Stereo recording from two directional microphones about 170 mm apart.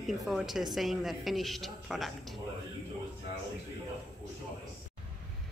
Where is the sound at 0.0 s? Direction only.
Centre (ahead or behind).